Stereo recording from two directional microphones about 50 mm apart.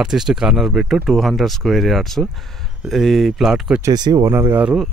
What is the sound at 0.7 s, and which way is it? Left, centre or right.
Speech, centre.